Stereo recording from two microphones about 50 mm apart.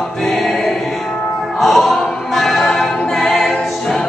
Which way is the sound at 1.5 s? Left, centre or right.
Centre.